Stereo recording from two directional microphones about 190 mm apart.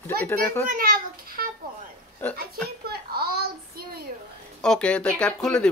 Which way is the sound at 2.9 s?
55° right (ahead or behind).